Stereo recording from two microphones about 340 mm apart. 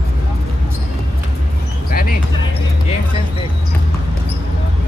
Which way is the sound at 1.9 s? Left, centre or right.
Left.